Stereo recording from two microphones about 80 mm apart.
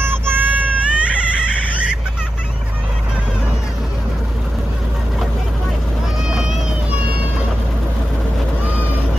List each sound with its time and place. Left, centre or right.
0.1 s child singing: right